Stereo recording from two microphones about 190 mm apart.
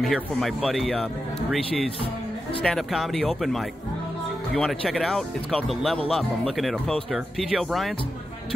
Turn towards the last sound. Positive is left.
turn(degrees=0)  # may be behind; listen again after turning